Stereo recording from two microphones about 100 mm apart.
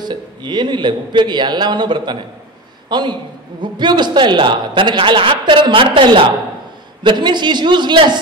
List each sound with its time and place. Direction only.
0.0 s a man's voice: 45° right (ahead or behind)
7.0 s a man's voice: 50° right (ahead or behind)